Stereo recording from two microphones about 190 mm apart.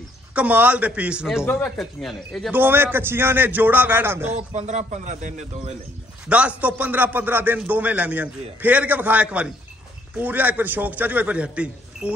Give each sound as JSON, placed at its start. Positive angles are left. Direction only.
{"t": 0.3, "sound": "a man's voice", "side_deg": -10}
{"t": 1.4, "sound": "speech", "side_deg": 10}
{"t": 2.5, "sound": "a man's voice", "side_deg": -10}
{"t": 4.3, "sound": "speech", "side_deg": -40}
{"t": 6.2, "sound": "a man's voice", "side_deg": -5}